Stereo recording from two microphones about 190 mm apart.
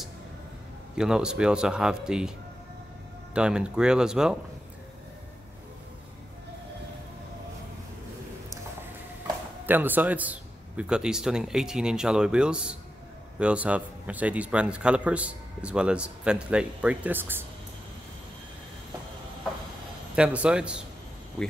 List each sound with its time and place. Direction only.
0.9 s a man's voice: 5° right (ahead or behind)
3.3 s a man's voice: 5° right (ahead or behind)
9.7 s a man's voice: 10° right (ahead or behind)
20.2 s a man's voice: 5° right (ahead or behind)